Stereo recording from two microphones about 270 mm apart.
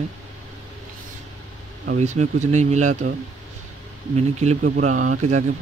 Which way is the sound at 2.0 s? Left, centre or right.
Right.